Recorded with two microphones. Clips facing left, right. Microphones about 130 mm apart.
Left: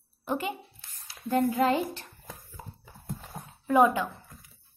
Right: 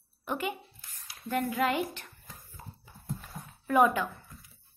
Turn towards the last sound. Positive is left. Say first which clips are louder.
# left 2 dB
turn(degrees=20)  # may be behind; listen again after turning